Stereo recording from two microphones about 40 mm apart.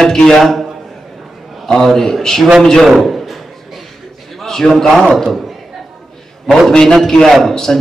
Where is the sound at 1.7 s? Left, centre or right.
Centre.